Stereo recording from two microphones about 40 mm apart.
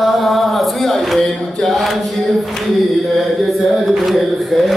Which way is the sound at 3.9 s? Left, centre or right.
Centre.